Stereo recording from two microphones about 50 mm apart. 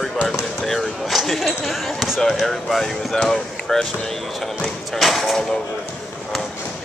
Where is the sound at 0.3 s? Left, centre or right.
Centre.